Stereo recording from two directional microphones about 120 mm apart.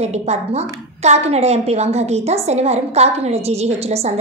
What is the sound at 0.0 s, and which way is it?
A woman's voice, 65° right (ahead or behind).